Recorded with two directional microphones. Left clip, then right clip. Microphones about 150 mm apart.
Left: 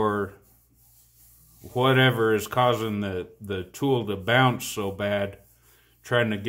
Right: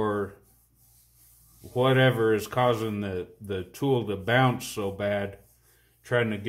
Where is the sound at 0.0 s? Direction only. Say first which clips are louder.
Left 3 dB; 20° left (ahead or behind).